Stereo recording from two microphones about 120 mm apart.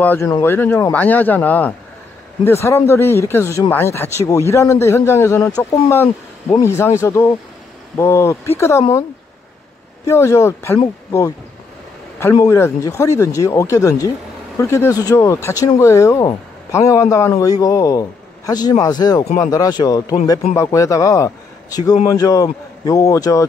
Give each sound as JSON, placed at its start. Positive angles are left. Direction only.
{"t": 0.2, "sound": "speech", "side_deg": 20}
{"t": 10.0, "sound": "speech", "side_deg": 25}
{"t": 12.4, "sound": "speech", "side_deg": 25}